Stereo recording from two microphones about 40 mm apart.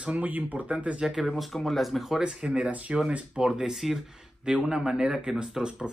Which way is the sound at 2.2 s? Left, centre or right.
Right.